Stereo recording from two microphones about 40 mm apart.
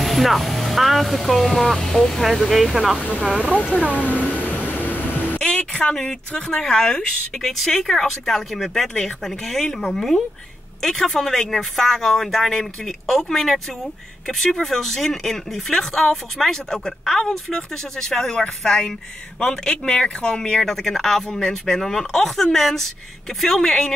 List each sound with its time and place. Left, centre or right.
0.0 s speech: centre
3.0 s speech: left
3.6 s speech: right
4.4 s vehicle: left
5.4 s speech: left
14.6 s speech: centre